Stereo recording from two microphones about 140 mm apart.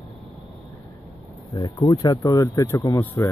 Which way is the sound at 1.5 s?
25° left (ahead or behind).